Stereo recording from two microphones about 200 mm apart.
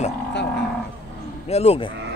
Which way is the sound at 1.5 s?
30° left (ahead or behind).